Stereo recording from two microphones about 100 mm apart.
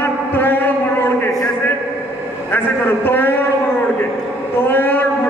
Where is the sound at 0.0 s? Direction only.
20° left (ahead or behind).